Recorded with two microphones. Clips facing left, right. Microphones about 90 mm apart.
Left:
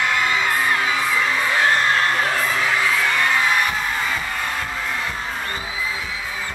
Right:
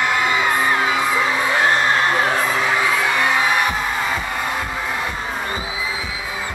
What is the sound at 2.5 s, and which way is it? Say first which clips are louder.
Music: right 2 dB; 15° right (ahead or behind).